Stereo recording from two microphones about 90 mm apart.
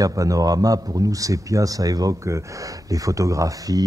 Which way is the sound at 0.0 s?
40° right (ahead or behind).